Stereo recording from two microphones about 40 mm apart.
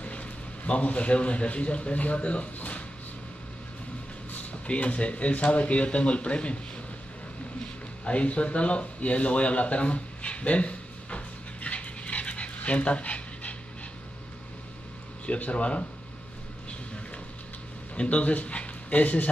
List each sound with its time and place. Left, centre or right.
0.0 s a man's voice: left
4.3 s speech: left
7.6 s a sound: left
15.2 s speech: left
17.9 s speech: left